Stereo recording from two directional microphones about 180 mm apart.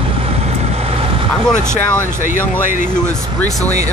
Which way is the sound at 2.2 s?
45° left (ahead or behind).